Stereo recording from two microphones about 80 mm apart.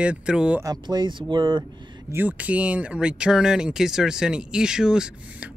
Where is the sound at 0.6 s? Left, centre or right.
Right.